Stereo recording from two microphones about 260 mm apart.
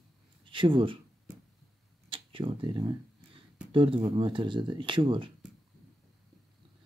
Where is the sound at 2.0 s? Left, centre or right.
Centre.